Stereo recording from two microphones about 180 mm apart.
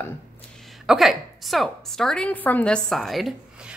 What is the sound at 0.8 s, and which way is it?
A woman's voice, centre (ahead or behind).